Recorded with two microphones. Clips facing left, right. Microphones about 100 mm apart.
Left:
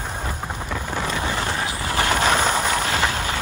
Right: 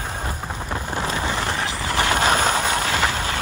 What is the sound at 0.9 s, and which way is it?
Vehicle, 25° right (ahead or behind).